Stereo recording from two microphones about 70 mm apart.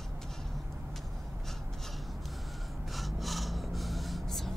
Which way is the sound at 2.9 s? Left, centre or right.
Centre.